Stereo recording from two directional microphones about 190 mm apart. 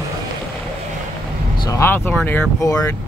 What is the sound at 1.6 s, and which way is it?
Vehicle, 15° left (ahead or behind).